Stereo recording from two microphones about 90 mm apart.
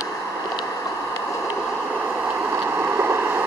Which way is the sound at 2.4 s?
25° right (ahead or behind).